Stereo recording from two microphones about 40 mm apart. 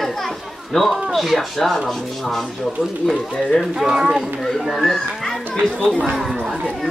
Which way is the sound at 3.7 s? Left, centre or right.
Centre.